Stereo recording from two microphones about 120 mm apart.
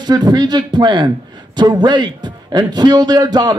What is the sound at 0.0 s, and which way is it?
A man's voice, 35° right (ahead or behind).